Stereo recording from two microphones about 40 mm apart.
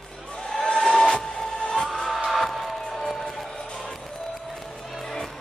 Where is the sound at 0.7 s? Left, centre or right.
Centre.